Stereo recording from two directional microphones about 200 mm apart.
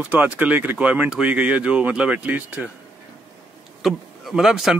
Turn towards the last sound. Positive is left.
turn(degrees=-5)  # may be behind; listen again after turning